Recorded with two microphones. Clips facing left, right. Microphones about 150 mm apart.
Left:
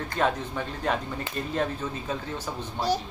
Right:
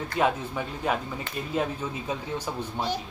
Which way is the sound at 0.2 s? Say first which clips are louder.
Right 1 dB; 10° right (ahead or behind).